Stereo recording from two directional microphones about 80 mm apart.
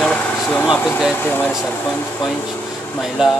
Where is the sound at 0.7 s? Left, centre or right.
Centre.